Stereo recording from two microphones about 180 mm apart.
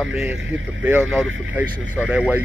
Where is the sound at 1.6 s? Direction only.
10° left (ahead or behind).